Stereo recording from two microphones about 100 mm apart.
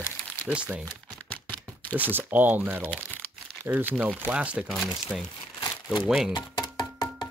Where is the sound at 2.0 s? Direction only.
20° right (ahead or behind).